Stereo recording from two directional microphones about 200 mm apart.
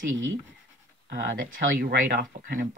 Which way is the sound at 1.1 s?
50° right (ahead or behind).